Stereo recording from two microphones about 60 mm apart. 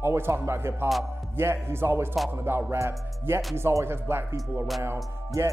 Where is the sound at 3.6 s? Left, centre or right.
Right.